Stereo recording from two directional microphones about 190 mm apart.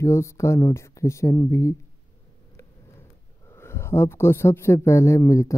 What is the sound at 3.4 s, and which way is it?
A man's voice, 15° left (ahead or behind).